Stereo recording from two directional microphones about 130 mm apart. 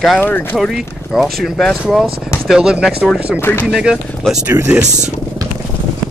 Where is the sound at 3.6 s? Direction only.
5° right (ahead or behind).